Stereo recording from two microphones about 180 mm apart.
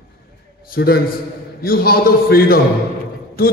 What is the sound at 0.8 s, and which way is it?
A man's voice, 60° left (ahead or behind).